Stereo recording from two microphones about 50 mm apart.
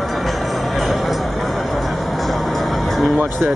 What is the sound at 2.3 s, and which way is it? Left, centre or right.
Music, centre.